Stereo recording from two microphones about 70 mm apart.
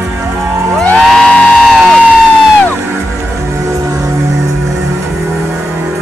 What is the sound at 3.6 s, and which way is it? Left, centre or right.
Music, right.